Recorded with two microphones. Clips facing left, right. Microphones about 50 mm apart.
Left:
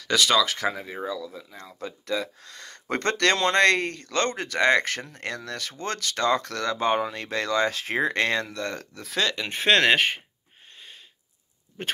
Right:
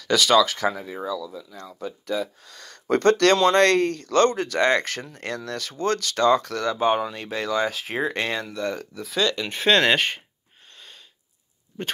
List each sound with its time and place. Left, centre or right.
0.1 s speech: left
1.3 s speech: left
1.8 s speech: left
2.6 s speech: left
6.7 s speech: left
9.2 s speech: left
9.9 s speech: centre